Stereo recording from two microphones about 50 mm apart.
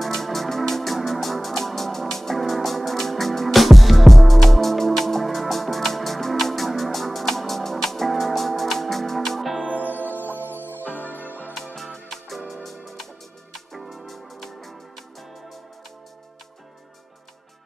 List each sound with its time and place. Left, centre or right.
0.0 s music: centre
10.7 s music: left
11.5 s music: centre